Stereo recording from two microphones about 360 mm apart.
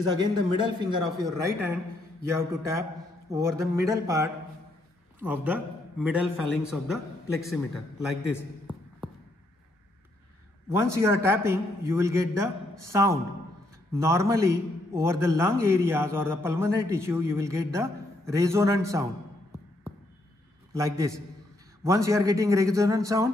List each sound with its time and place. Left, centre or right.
0.0 s a man's voice: centre
3.3 s a man's voice: centre
8.4 s a sound: centre
10.7 s a man's voice: centre
20.7 s a man's voice: centre